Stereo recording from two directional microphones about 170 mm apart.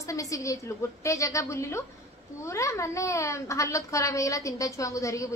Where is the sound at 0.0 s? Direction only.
20° left (ahead or behind).